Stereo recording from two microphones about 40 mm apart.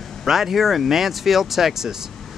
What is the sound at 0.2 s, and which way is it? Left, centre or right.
Speech, centre.